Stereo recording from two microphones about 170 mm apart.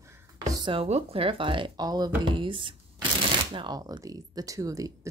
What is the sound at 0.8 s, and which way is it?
Speech, 35° right (ahead or behind).